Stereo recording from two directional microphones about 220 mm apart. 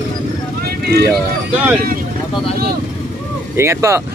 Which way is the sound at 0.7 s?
45° right (ahead or behind).